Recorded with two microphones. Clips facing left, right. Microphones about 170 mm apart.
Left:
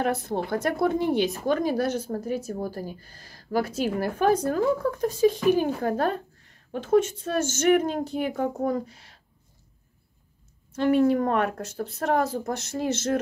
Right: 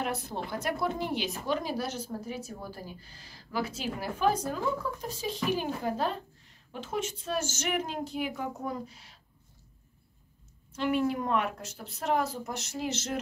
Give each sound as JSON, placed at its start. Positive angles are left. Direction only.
{"t": 0.0, "sound": "speech", "side_deg": 55}
{"t": 10.7, "sound": "speech", "side_deg": 50}